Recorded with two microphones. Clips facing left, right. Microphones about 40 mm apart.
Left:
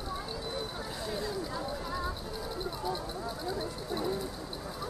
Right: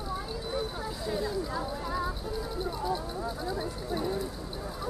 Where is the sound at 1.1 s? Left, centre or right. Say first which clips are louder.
Right 5 dB; centre.